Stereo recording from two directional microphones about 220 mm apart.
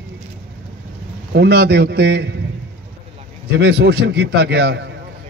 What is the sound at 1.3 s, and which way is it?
A man's voice, 45° right (ahead or behind).